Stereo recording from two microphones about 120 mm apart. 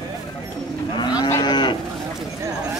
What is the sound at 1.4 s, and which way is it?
Cattle, 40° left (ahead or behind).